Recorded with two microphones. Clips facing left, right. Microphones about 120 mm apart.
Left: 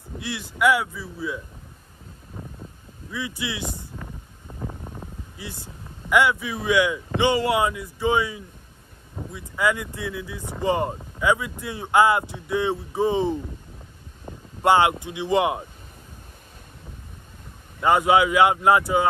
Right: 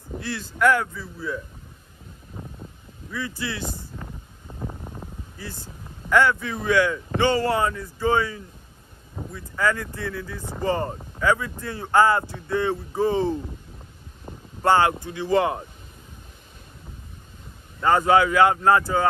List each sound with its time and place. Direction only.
0.2 s speech: 15° left (ahead or behind)
3.2 s speech: 15° left (ahead or behind)
4.5 s a sound: centre (ahead or behind)
5.4 s speech: 15° left (ahead or behind)
14.6 s speech: 15° left (ahead or behind)
17.8 s speech: 15° left (ahead or behind)